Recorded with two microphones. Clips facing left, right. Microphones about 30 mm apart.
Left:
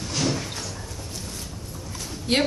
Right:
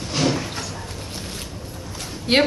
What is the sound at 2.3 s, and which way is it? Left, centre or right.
Speech, right.